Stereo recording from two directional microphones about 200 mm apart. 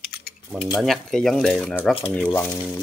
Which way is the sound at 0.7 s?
Centre (ahead or behind).